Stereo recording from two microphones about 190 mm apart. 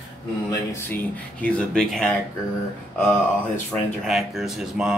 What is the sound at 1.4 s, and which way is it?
Speech, 5° left (ahead or behind).